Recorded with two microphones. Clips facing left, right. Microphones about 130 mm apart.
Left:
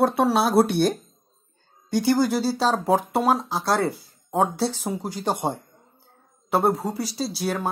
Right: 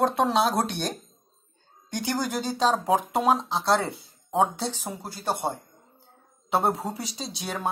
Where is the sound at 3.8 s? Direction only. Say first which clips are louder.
Left 7 dB; 25° right (ahead or behind).